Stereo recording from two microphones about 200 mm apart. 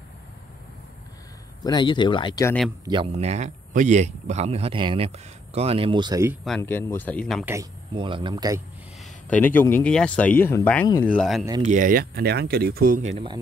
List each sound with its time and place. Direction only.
1.6 s speech: 20° left (ahead or behind)
2.8 s speech: 25° right (ahead or behind)
3.1 s speech: 35° right (ahead or behind); by 6.3 s 20° right (ahead or behind)
6.4 s speech: 5° left (ahead or behind)
7.9 s speech: 25° right (ahead or behind)
9.3 s speech: 10° left (ahead or behind)
11.6 s speech: 40° right (ahead or behind)